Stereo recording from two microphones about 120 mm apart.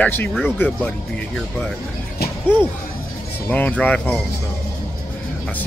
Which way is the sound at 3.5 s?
15° left (ahead or behind).